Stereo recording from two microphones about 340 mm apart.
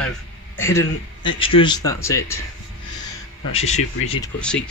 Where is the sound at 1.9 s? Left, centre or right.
Centre.